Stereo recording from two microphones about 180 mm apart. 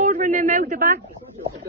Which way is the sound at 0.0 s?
40° right (ahead or behind).